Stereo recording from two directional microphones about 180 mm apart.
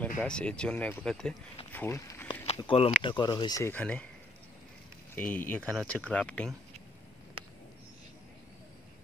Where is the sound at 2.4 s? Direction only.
30° left (ahead or behind).